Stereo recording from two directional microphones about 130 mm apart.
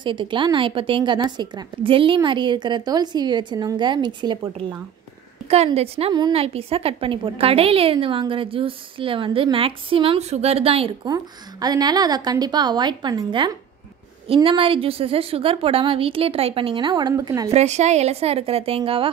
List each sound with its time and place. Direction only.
0.0 s a woman's voice: 40° right (ahead or behind)
5.8 s a woman's voice: 50° right (ahead or behind)
11.6 s a woman's voice: 30° right (ahead or behind)
14.2 s a woman's voice: 45° right (ahead or behind); by 17.5 s 30° right (ahead or behind)
17.5 s a woman's voice: 60° right (ahead or behind)